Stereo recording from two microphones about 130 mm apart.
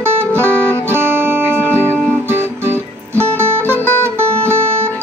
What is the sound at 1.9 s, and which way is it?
Music, 10° left (ahead or behind).